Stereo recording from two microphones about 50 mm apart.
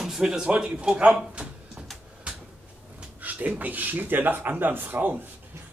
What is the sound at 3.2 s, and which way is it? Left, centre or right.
Speech, right.